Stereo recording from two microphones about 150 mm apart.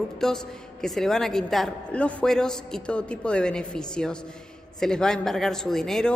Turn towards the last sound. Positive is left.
turn(degrees=5)  # may be behind; listen again after turning